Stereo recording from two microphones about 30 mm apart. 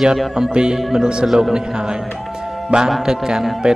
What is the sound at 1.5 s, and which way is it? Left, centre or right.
Speech, right.